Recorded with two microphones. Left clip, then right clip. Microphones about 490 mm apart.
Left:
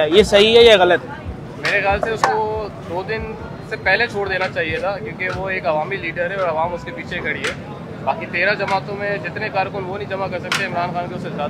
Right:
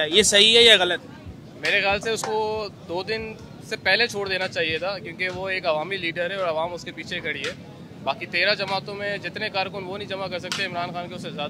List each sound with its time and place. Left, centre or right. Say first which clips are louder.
0.0 s a man's voice: left 5 dB; centre
1.6 s speech: left 4 dB; right